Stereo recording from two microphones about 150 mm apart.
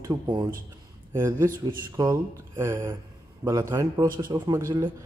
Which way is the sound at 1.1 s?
15° right (ahead or behind).